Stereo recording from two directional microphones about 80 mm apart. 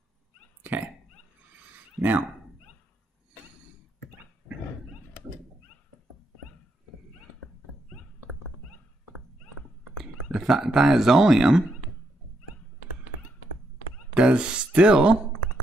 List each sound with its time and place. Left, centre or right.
2.0 s speech: right
9.9 s a sound: centre
10.7 s speech: centre
14.1 s speech: centre